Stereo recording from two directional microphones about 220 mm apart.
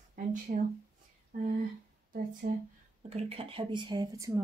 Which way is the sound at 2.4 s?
40° right (ahead or behind).